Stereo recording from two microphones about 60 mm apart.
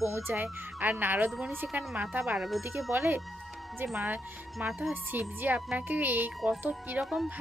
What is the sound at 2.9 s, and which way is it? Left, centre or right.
Speech, right.